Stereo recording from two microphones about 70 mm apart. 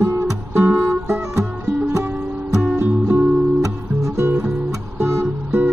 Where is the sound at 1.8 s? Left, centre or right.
Right.